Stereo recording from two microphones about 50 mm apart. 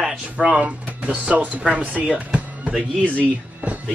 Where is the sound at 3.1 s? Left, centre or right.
Right.